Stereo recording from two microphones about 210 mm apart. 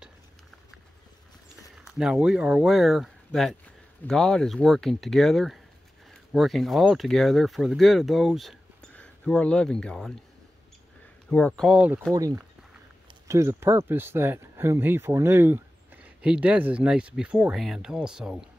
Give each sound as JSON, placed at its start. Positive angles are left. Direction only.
{"t": 1.9, "sound": "speech", "side_deg": -5}
{"t": 11.2, "sound": "speech", "side_deg": 5}
{"t": 12.1, "sound": "speech", "side_deg": -15}